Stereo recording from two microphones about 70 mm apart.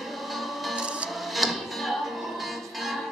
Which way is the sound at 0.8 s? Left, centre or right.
Centre.